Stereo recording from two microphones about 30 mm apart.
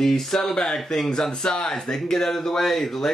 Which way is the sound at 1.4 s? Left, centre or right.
Left.